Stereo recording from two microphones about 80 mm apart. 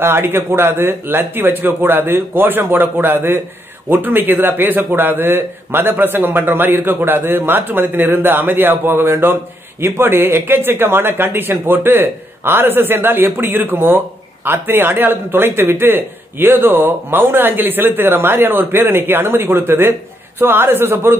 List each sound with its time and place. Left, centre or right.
0.0 s a man's voice: right